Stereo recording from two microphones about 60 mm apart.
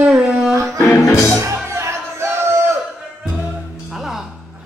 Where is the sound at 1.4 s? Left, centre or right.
Right.